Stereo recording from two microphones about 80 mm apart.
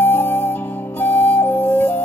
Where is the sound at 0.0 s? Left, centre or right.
Left.